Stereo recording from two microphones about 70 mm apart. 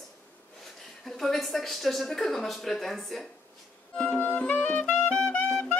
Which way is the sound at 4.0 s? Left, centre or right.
Left.